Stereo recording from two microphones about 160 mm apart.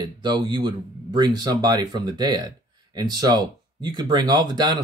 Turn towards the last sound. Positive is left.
turn(degrees=-25)  # may be behind; listen again after turning